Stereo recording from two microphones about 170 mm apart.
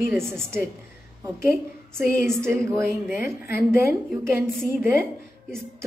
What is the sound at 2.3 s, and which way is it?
A woman's voice, 15° right (ahead or behind).